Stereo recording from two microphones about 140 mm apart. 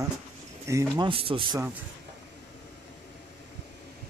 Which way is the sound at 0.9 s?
35° right (ahead or behind).